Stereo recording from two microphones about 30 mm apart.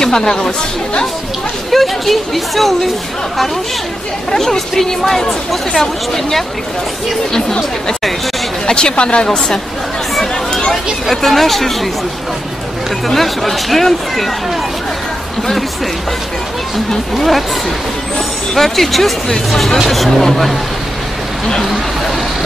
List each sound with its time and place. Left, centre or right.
0.0 s speech: centre
1.7 s speech: centre
4.3 s speech: centre
8.6 s speech: left
10.2 s a sound: left
11.1 s speech: centre
13.0 s speech: centre
17.1 s speech: centre